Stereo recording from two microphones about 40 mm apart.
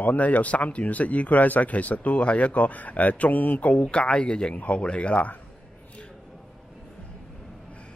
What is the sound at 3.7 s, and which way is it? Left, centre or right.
Speech, left.